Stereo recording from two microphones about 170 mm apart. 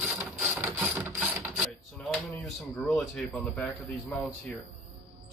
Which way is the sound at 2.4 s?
Centre (ahead or behind).